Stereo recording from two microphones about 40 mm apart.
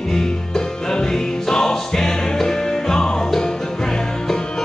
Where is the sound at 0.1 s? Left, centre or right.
Centre.